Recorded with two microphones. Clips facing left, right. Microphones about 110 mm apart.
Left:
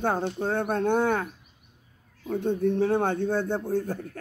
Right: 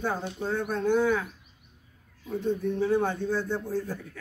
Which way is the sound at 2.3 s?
60° left (ahead or behind).